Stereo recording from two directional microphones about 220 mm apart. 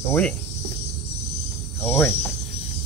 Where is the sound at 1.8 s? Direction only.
10° left (ahead or behind).